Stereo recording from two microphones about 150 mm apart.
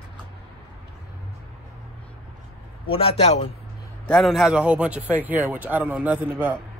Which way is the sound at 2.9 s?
40° left (ahead or behind).